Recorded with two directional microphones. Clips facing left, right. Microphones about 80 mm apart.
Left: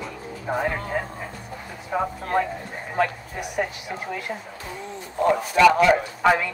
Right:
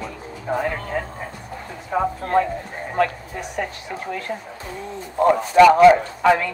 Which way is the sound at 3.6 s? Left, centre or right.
Centre.